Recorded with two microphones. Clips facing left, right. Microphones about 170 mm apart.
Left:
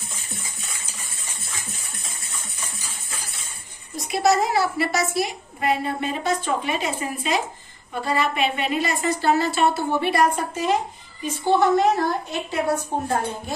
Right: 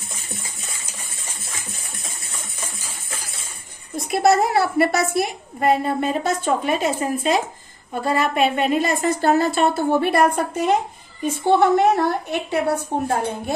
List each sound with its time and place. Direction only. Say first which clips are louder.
3.9 s a woman's voice: right 3 dB; 55° right (ahead or behind)